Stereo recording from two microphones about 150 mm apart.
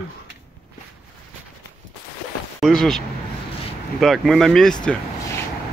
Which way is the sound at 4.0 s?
Centre (ahead or behind).